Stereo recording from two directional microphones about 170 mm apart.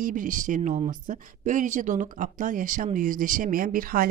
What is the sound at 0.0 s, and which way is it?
A woman's voice, 50° right (ahead or behind).